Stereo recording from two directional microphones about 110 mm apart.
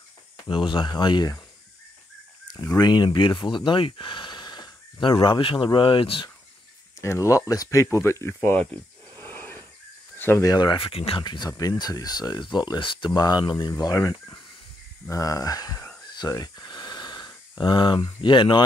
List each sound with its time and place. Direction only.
0.5 s speech: 50° left (ahead or behind)
2.4 s speech: 30° left (ahead or behind); by 6.3 s 50° left (ahead or behind)
7.0 s speech: 25° left (ahead or behind)
9.1 s a sound: 15° left (ahead or behind)
10.5 s speech: 45° left (ahead or behind); by 11.2 s 60° left (ahead or behind)
11.2 s speech: 40° left (ahead or behind)
16.2 s a sound: 40° left (ahead or behind)